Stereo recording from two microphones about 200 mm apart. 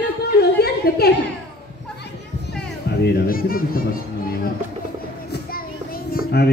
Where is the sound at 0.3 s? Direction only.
50° left (ahead or behind).